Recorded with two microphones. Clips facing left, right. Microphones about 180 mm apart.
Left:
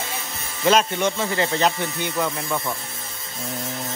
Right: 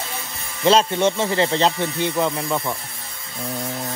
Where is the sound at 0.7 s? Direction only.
30° right (ahead or behind).